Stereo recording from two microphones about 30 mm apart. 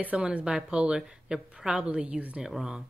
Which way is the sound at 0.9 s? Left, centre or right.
Right.